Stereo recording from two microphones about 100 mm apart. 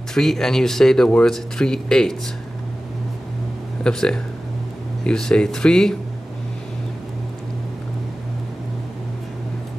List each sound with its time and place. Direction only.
0.1 s speech: 5° left (ahead or behind)
3.8 s speech: 5° left (ahead or behind)